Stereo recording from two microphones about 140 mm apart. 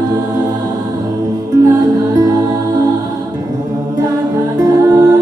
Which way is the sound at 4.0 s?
25° right (ahead or behind).